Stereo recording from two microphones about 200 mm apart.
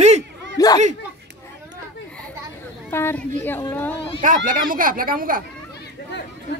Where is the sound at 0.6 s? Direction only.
20° left (ahead or behind).